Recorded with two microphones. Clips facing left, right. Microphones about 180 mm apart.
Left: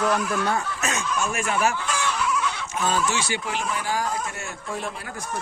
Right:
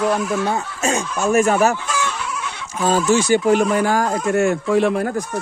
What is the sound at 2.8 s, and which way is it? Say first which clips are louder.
Speech: right 8 dB; 40° right (ahead or behind).